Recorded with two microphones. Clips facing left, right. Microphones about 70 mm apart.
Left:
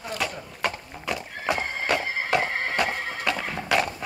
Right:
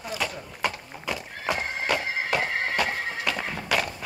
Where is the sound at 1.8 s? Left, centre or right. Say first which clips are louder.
Left 1 dB; left.